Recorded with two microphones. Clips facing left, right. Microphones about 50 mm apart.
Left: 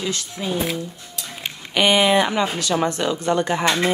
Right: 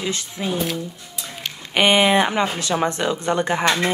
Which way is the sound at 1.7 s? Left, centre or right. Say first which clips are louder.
Right 1 dB; right.